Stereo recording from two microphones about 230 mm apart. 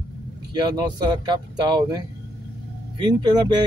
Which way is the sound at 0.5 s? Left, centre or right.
Centre.